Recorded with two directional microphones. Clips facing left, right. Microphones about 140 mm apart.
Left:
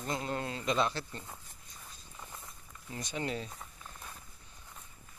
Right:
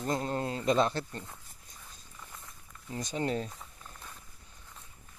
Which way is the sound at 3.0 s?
40° right (ahead or behind).